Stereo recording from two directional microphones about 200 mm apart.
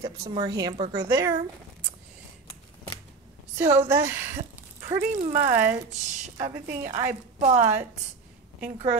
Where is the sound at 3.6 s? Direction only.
10° right (ahead or behind).